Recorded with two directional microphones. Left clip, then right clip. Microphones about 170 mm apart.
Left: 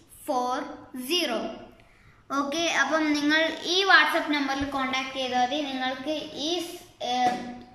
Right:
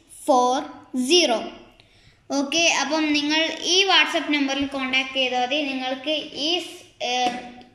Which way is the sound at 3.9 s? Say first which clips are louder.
Right 1 dB; 15° right (ahead or behind).